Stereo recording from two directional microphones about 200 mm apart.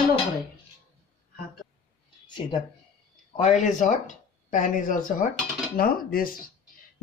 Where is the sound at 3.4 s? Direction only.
35° left (ahead or behind).